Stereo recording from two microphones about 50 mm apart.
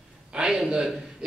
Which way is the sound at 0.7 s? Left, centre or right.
Centre.